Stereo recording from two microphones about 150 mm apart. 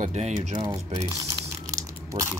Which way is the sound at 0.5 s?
25° right (ahead or behind).